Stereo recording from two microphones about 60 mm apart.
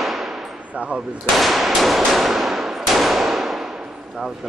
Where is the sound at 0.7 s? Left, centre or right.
Centre.